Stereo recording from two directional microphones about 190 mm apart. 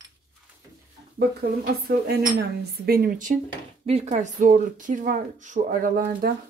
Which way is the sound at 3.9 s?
35° right (ahead or behind).